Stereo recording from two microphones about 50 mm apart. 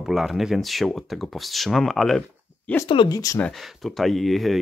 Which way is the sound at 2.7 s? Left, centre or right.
Left.